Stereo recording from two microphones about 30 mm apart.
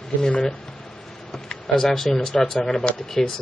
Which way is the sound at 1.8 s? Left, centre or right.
Centre.